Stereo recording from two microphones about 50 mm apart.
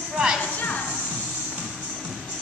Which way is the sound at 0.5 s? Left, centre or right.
Left.